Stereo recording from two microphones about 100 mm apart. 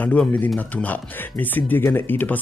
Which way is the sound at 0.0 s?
15° left (ahead or behind).